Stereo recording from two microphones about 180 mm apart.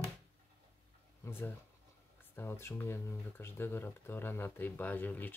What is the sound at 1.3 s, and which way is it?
Speech, 10° left (ahead or behind).